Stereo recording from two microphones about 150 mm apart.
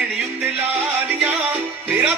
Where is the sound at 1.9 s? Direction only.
10° right (ahead or behind).